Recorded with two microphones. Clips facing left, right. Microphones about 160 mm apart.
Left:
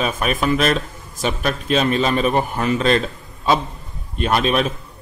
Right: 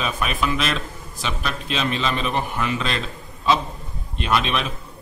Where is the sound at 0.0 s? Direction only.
45° left (ahead or behind).